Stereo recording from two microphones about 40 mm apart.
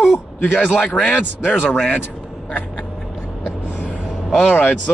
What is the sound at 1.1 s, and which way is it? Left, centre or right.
Speech, left.